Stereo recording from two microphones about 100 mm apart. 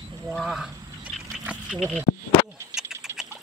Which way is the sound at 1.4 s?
15° right (ahead or behind).